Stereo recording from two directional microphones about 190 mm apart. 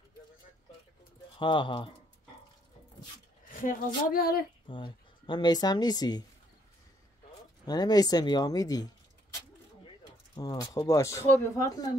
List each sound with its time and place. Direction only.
1.4 s speech: 25° left (ahead or behind)
3.4 s speech: 45° left (ahead or behind)
4.6 s speech: 25° left (ahead or behind)
7.6 s speech: 20° left (ahead or behind)
10.3 s speech: 20° left (ahead or behind)